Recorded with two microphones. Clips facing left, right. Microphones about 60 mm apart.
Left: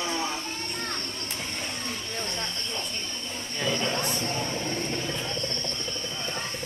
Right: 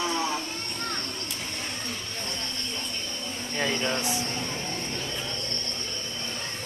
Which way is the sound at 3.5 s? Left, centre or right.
Right.